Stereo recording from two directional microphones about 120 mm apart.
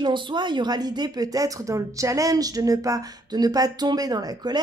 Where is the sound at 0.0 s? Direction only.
40° right (ahead or behind).